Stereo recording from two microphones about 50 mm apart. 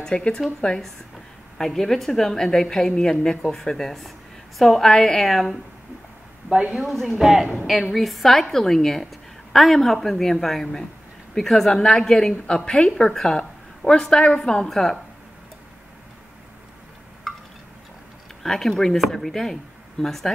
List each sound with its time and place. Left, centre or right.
0.0 s a woman's voice: centre
6.7 s a woman's voice: centre
17.3 s a sound: centre
18.4 s a woman's voice: centre